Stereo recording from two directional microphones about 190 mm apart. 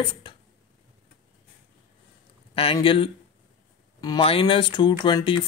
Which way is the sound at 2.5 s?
30° left (ahead or behind).